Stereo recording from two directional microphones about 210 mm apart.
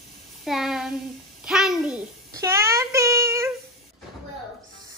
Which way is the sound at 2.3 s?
15° right (ahead or behind).